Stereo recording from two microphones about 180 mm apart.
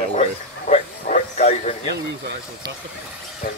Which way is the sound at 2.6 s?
25° right (ahead or behind).